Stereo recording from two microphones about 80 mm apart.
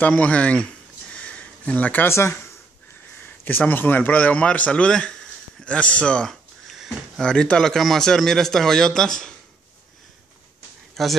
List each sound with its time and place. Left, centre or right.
0.0 s speech: centre
1.1 s a sound: centre
2.1 s speech: left; by 9.3 s centre
11.0 s speech: centre